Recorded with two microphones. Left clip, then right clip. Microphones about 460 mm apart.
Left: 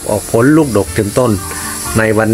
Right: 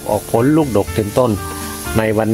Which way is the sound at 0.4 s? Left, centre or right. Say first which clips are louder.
Left 6 dB; right.